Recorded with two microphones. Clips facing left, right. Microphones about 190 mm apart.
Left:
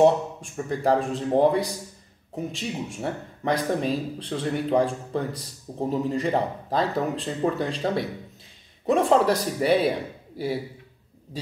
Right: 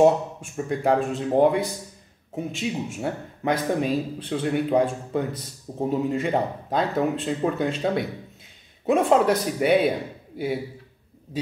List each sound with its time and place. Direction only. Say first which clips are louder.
0.0 s a man's voice: right 1 dB; centre (ahead or behind)
2.5 s a man's voice: right 3 dB; centre (ahead or behind)